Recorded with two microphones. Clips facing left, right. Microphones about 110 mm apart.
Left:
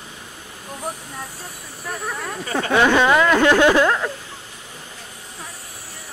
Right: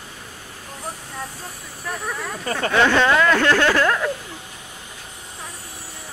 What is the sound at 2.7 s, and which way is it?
Speech, 15° left (ahead or behind).